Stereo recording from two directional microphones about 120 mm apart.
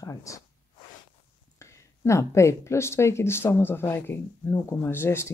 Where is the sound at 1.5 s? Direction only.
25° left (ahead or behind).